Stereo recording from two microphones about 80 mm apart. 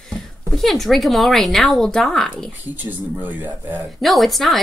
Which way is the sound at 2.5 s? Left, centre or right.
Right.